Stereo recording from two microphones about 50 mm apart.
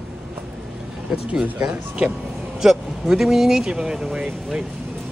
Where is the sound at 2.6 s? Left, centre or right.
Centre.